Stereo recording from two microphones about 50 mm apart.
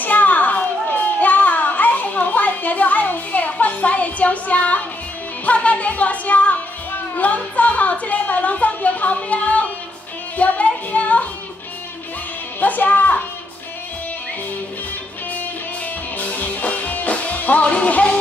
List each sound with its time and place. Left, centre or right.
0.0 s a sound: left
5.4 s speech: left
10.3 s music: left
12.5 s a child's voice: left
16.2 s music: left